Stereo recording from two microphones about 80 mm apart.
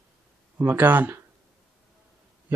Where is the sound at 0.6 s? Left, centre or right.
Right.